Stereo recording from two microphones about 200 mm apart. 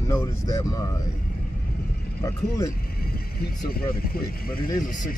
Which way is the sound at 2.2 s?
15° left (ahead or behind).